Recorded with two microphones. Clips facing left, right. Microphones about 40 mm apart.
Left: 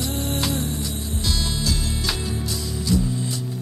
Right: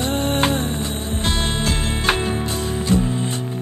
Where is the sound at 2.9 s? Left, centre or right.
Right.